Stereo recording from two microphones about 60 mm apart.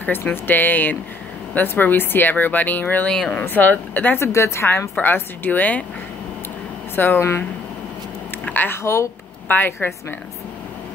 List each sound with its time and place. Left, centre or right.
0.0 s speech: left
4.2 s speech: left
4.9 s a woman's voice: left
7.2 s speech: left
8.6 s speech: left
9.5 s speech: left